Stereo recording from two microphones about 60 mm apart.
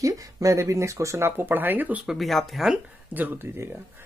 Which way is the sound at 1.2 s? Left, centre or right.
Right.